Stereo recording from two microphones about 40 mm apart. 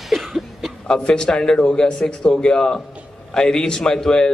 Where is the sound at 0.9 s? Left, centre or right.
Centre.